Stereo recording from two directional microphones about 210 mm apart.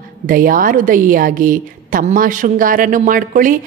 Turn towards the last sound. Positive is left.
turn(degrees=-40)  # may be behind; listen again after turning